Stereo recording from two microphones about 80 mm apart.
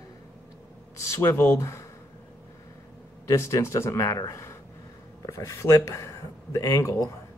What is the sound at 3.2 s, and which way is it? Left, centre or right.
Speech, left.